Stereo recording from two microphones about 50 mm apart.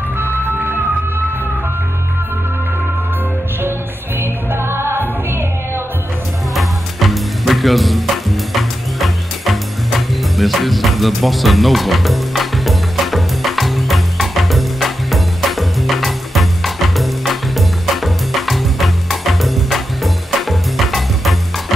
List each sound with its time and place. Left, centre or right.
4.2 s music: right
6.5 s music: centre